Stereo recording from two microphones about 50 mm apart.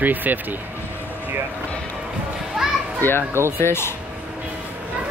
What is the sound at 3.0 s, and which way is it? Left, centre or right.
Speech, left.